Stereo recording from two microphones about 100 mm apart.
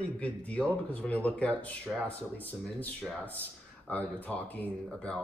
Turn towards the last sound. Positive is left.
turn(degrees=10)  # may be behind; listen again after turning